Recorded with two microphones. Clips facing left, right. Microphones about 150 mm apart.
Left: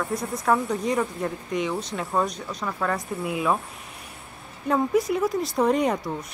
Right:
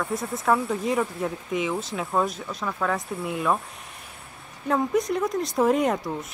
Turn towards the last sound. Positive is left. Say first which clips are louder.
# even
turn(degrees=0)  # may be behind; listen again after turning